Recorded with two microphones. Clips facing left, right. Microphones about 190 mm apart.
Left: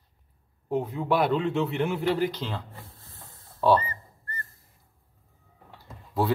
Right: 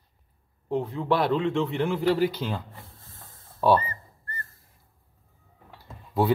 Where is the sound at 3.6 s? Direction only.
15° right (ahead or behind).